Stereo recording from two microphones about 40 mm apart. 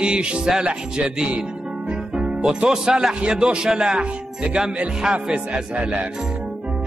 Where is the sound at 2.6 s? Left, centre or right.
Centre.